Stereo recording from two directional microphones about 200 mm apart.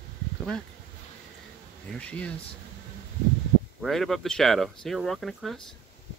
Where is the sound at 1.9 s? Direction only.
5° left (ahead or behind).